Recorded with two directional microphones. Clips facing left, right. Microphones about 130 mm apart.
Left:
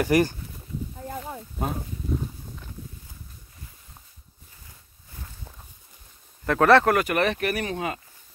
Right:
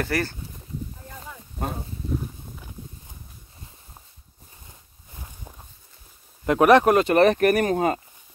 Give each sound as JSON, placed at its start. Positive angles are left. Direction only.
{"t": 0.0, "sound": "speech", "side_deg": 15}
{"t": 1.0, "sound": "a sound", "side_deg": 35}
{"t": 5.2, "sound": "walk", "side_deg": -15}
{"t": 6.4, "sound": "speech", "side_deg": -15}